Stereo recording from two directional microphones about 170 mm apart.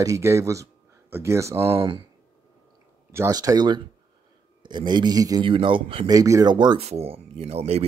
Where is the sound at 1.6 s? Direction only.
30° right (ahead or behind).